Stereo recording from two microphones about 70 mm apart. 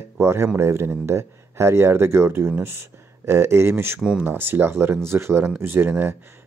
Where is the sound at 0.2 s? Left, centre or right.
Right.